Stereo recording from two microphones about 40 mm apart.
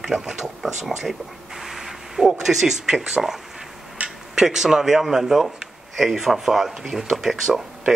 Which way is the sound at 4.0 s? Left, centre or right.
Right.